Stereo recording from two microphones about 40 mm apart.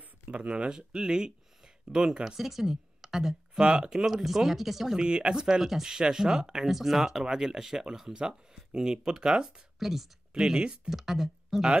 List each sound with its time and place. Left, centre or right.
0.0 s a sound: right
0.5 s speech: right
2.3 s speech: centre
3.5 s speech: right
4.0 s speech: centre
5.0 s speech: right
5.6 s speech: centre
9.8 s speech: centre
10.3 s speech: centre
10.9 s speech: centre